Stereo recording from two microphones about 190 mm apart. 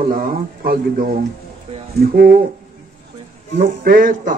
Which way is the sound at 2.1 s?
50° right (ahead or behind).